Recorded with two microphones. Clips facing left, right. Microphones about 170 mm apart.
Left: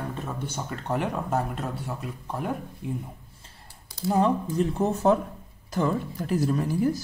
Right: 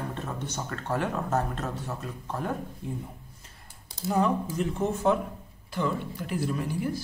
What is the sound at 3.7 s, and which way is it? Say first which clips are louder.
Typing: left 2 dB; 20° right (ahead or behind).